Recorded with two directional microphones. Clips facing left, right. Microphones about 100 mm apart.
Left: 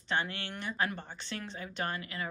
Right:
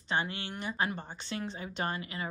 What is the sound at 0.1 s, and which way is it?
Speech, 15° right (ahead or behind).